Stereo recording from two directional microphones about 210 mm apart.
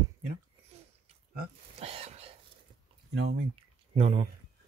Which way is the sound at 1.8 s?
30° right (ahead or behind).